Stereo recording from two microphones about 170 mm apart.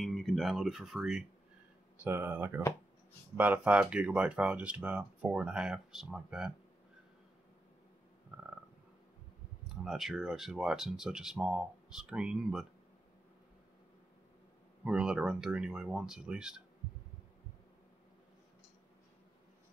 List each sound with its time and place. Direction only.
0.0 s speech: centre (ahead or behind)
8.3 s a sound: 5° right (ahead or behind)
9.8 s speech: centre (ahead or behind)
14.9 s speech: 5° right (ahead or behind)